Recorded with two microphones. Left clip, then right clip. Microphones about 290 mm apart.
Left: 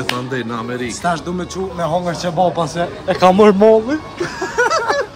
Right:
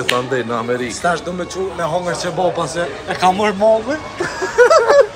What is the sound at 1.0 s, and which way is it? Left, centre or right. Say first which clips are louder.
Speech: right 1 dB; left.